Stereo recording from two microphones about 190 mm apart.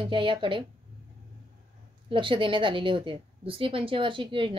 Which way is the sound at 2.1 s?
25° right (ahead or behind).